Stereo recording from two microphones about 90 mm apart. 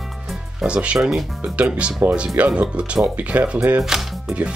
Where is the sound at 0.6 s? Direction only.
10° right (ahead or behind).